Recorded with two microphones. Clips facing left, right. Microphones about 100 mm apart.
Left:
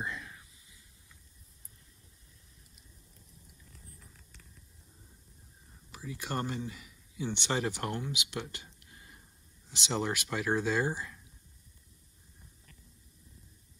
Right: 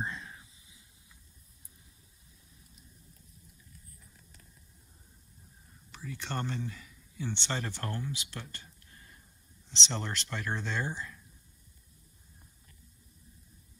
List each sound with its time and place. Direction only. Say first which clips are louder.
0.0 s whispering: right 1 dB; 25° right (ahead or behind)
5.9 s speech: left 1 dB; 10° left (ahead or behind)